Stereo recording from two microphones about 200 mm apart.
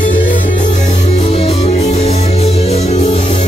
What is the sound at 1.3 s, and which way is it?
Music, 30° left (ahead or behind).